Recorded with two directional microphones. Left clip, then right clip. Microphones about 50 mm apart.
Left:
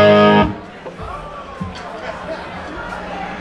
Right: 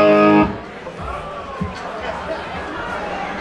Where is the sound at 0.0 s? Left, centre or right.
Left.